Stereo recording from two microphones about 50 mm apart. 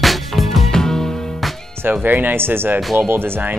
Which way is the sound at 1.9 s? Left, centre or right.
Right.